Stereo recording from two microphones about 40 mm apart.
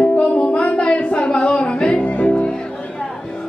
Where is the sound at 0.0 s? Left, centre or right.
Left.